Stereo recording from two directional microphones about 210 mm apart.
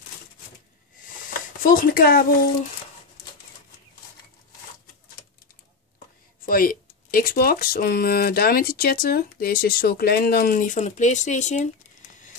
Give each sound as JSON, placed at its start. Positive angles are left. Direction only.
{"t": 1.6, "sound": "speech", "side_deg": 40}
{"t": 6.4, "sound": "speech", "side_deg": 45}